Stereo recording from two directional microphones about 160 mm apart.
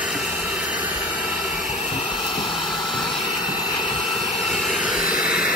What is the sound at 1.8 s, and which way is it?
Vehicle, 35° left (ahead or behind).